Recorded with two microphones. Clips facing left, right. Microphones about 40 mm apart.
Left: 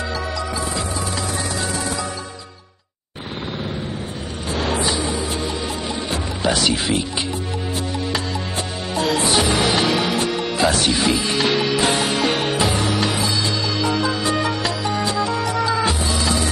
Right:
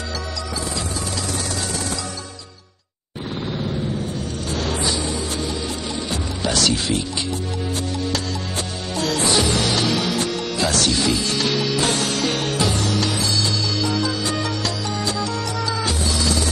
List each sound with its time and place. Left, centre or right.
4.6 s vehicle: centre
6.4 s speech: centre
8.9 s music: centre